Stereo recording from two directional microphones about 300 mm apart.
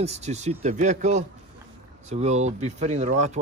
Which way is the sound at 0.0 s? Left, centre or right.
Right.